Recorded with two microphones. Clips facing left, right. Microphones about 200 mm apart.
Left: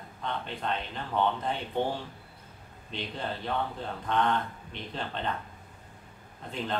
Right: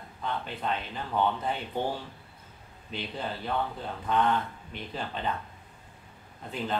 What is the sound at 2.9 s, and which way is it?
Speech, 5° right (ahead or behind).